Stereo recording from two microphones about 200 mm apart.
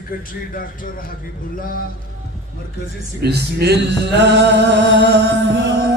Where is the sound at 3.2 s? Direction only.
55° right (ahead or behind).